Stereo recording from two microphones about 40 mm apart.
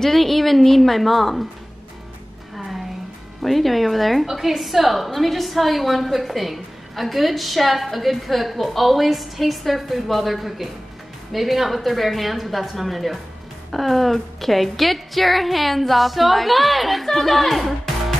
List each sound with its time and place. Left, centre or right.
0.0 s a woman's voice: centre
3.4 s a woman's voice: centre